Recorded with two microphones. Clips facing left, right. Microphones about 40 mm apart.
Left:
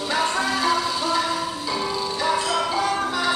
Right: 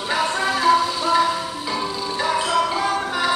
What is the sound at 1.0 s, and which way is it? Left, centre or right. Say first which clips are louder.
Music: right 4 dB; right.